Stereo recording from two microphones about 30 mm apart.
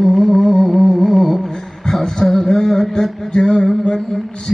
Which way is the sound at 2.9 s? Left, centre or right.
Left.